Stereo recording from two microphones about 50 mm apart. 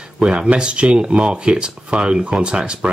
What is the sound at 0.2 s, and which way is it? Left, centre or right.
Speech, centre.